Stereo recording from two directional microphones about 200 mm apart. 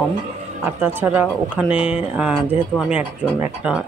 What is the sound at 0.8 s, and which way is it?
Speech, 10° right (ahead or behind).